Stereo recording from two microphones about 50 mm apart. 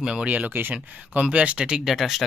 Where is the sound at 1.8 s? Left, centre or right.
Centre.